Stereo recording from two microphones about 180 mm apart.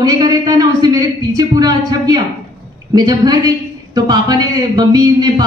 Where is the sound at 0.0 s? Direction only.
20° right (ahead or behind).